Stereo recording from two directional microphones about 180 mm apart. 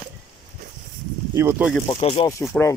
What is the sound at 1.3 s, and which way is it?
Speech, 15° right (ahead or behind).